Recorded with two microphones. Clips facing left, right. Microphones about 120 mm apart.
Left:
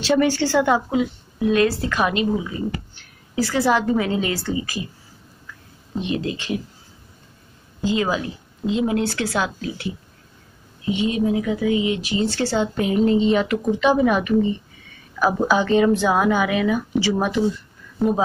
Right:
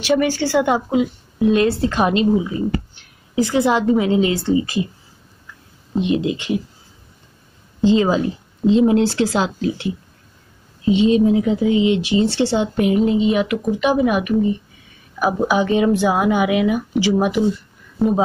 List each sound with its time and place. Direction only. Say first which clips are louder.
0.0 s a woman's voice: right 1 dB; 10° right (ahead or behind); by 2.2 s 30° right (ahead or behind)
3.3 s speech: right 3 dB; 20° right (ahead or behind)
5.9 s a woman's voice: right 6 dB; 20° right (ahead or behind)
7.8 s speech: right 6 dB; 25° right (ahead or behind)
10.9 s a woman's voice: right 7 dB; 25° right (ahead or behind)